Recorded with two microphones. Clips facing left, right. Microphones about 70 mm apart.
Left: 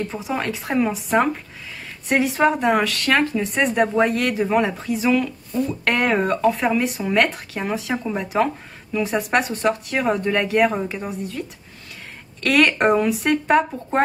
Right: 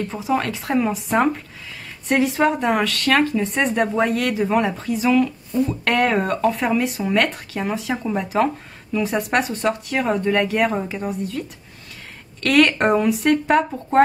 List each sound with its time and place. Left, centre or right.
0.1 s speech: centre
12.4 s speech: centre